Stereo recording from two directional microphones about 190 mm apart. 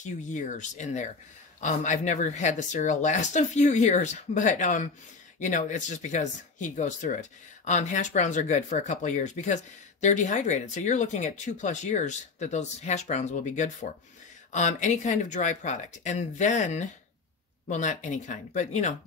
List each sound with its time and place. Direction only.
0.0 s speech: 40° left (ahead or behind)